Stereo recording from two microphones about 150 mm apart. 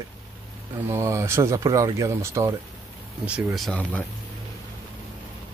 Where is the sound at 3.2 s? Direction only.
5° right (ahead or behind).